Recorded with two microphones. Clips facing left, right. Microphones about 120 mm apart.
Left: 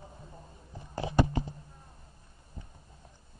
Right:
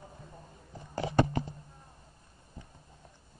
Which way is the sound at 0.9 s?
20° left (ahead or behind).